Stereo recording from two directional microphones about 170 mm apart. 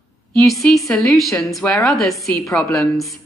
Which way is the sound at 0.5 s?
Centre (ahead or behind).